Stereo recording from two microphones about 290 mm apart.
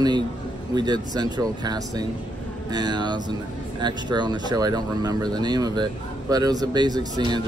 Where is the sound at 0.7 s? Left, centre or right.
Centre.